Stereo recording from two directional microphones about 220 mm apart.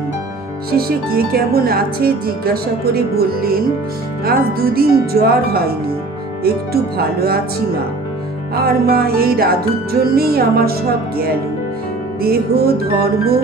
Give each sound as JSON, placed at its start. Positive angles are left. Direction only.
{"t": 0.7, "sound": "speech", "side_deg": -45}
{"t": 8.5, "sound": "speech", "side_deg": -45}